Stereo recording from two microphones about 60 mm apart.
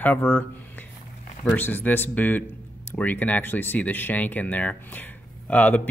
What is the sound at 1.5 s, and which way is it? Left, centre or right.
Speech, left.